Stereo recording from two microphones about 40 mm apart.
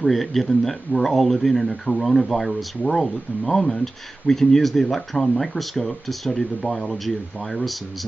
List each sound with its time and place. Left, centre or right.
0.0 s speech: centre
1.7 s speech: centre
2.0 s speech: centre